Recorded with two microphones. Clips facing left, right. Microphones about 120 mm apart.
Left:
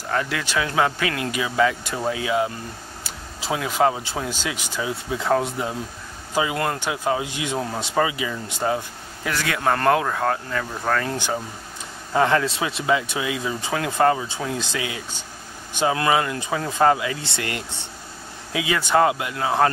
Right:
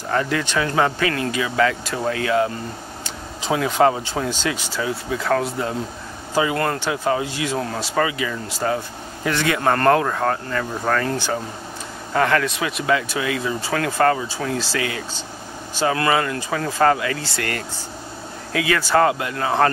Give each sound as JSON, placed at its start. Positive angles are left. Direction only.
{"t": 0.1, "sound": "speech", "side_deg": 0}
{"t": 9.2, "sound": "speech", "side_deg": 0}
{"t": 12.1, "sound": "speech", "side_deg": 20}